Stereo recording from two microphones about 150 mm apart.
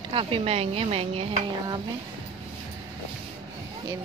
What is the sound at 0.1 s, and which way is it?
A woman's voice, 35° right (ahead or behind).